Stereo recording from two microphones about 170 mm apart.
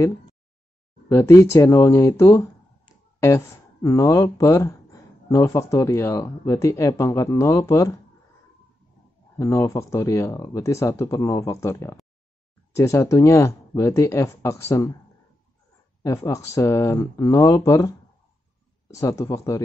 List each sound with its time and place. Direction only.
1.0 s speech: 15° left (ahead or behind)
9.4 s speech: 15° left (ahead or behind)
16.0 s speech: 20° left (ahead or behind)
18.9 s speech: 20° left (ahead or behind)